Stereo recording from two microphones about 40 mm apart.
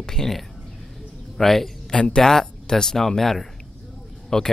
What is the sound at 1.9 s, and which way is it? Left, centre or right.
Speech, left.